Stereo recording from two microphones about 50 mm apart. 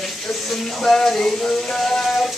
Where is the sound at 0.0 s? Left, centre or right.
Centre.